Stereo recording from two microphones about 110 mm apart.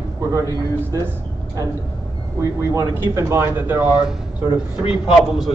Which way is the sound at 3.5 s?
15° right (ahead or behind).